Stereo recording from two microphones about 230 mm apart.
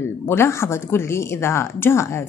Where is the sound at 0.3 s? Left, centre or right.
Centre.